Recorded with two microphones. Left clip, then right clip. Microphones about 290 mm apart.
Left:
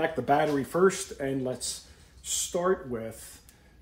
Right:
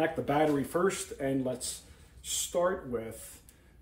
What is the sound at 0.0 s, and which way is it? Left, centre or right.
Speech, left.